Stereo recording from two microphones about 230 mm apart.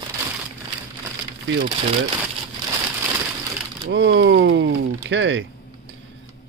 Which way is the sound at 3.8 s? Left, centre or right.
Right.